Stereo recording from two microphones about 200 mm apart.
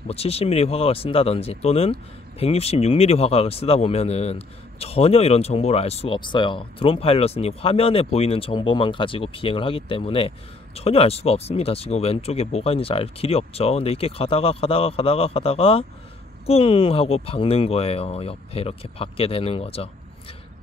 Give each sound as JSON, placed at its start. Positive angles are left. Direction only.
{"t": 0.1, "sound": "speech", "side_deg": 30}